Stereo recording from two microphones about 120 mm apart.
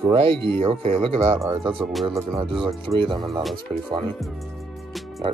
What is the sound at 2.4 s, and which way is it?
Speech, 50° right (ahead or behind).